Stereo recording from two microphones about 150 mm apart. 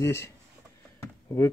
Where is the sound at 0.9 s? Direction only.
20° left (ahead or behind).